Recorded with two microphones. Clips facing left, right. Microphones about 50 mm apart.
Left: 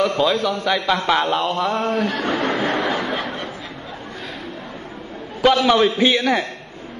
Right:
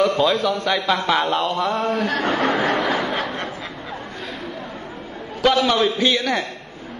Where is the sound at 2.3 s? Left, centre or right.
Right.